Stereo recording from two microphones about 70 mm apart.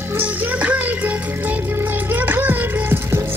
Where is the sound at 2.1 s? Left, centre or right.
Right.